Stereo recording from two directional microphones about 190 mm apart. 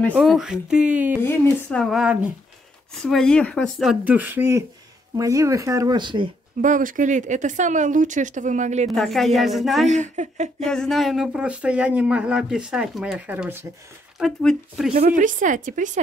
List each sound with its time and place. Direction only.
0.1 s speech: centre (ahead or behind)
1.2 s speech: 10° left (ahead or behind); by 6.3 s 25° right (ahead or behind)
6.6 s speech: 45° right (ahead or behind)
8.8 s speech: centre (ahead or behind)
9.8 s speech: 40° right (ahead or behind)
10.7 s speech: centre (ahead or behind)
14.2 s speech: centre (ahead or behind)
15.0 s a woman's voice: 40° right (ahead or behind)